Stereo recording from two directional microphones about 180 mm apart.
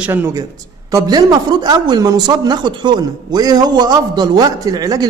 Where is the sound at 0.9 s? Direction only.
20° right (ahead or behind).